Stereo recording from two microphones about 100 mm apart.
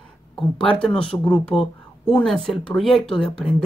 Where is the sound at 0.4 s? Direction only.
10° left (ahead or behind).